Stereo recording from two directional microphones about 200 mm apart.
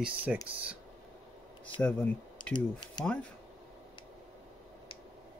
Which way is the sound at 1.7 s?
25° left (ahead or behind).